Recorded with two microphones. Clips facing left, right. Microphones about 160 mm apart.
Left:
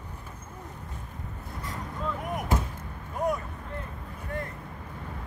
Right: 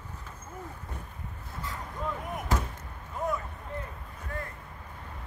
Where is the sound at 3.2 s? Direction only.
40° left (ahead or behind).